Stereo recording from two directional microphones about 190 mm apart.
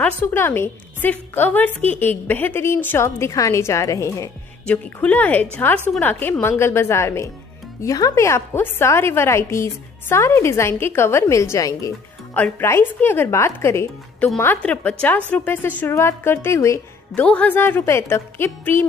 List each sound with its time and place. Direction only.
0.0 s a woman's voice: 10° left (ahead or behind)